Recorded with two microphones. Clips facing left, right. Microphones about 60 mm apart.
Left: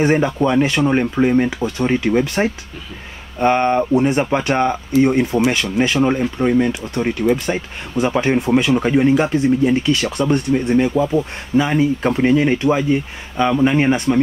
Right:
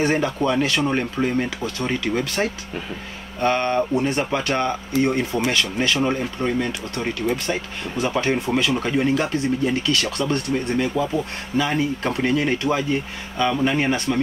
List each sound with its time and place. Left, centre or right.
0.0 s speech: left